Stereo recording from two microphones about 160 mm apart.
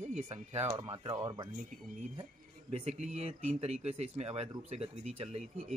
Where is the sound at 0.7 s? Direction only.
30° right (ahead or behind).